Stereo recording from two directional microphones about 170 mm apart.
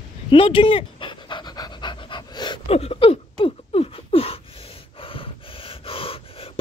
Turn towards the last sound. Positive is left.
turn(degrees=35)  # may be behind; listen again after turning